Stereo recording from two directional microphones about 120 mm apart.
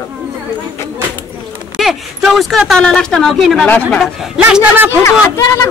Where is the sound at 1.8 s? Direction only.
Centre (ahead or behind).